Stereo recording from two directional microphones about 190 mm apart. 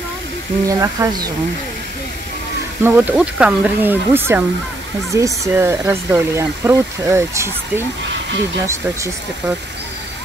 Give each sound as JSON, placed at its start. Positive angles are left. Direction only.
{"t": 0.7, "sound": "speech", "side_deg": -20}
{"t": 2.8, "sound": "speech", "side_deg": -5}